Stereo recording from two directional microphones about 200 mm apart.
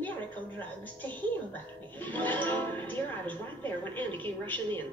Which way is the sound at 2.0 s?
10° left (ahead or behind).